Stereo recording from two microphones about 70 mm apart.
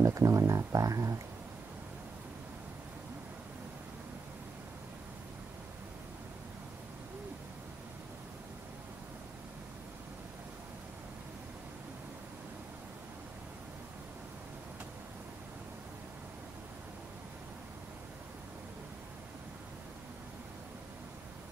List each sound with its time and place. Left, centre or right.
0.0 s speech: right